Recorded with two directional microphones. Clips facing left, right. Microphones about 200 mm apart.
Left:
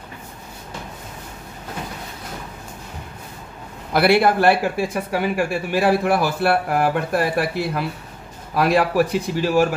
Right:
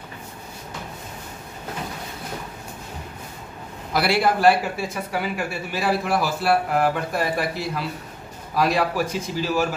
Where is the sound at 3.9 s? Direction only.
55° left (ahead or behind).